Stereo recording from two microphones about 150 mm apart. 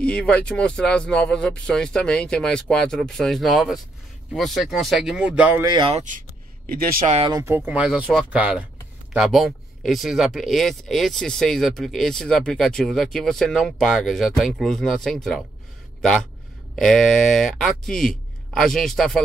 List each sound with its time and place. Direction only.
0.0 s speech: 5° left (ahead or behind); by 5.6 s 10° right (ahead or behind)
5.6 s speech: 30° right (ahead or behind)
5.9 s speech: 60° right (ahead or behind)
6.7 s speech: 75° right (ahead or behind)
7.4 s speech: 15° right (ahead or behind); by 15.4 s centre (ahead or behind)
16.7 s speech: centre (ahead or behind)